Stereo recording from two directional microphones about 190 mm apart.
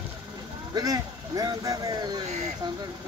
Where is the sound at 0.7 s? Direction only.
20° right (ahead or behind).